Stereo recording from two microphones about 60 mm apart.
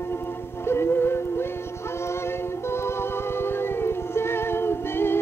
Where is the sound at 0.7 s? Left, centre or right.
Left.